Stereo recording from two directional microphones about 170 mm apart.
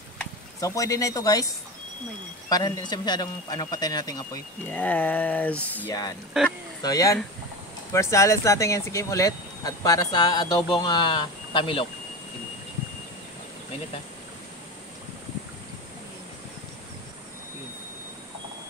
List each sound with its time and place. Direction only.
0.6 s speech: 20° left (ahead or behind)
2.5 s speech: 25° left (ahead or behind)
4.6 s speech: 10° left (ahead or behind)
6.4 s speech: 5° right (ahead or behind)
6.8 s speech: 20° left (ahead or behind)